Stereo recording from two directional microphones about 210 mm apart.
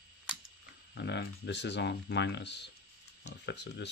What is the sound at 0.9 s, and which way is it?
Speech, 55° left (ahead or behind).